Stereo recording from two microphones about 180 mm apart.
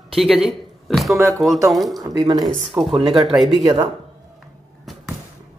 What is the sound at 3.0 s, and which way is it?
Speech, centre (ahead or behind).